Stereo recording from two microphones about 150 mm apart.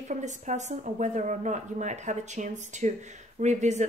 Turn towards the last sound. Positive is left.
turn(degrees=-50)  # may be behind; listen again after turning